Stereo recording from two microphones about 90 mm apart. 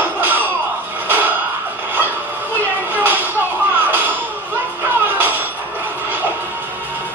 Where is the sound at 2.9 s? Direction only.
20° right (ahead or behind).